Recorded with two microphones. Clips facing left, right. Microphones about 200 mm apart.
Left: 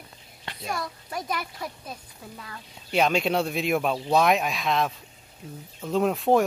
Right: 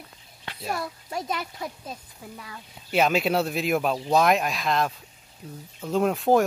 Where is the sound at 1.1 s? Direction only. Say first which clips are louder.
Right 1 dB; 25° right (ahead or behind).